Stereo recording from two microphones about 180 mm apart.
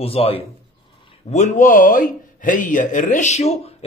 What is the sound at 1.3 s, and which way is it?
A man's voice, 45° left (ahead or behind).